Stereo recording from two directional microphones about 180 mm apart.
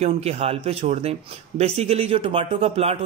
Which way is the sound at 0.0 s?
35° right (ahead or behind).